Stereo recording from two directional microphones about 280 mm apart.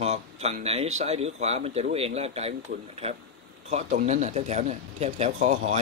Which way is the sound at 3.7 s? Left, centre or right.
Right.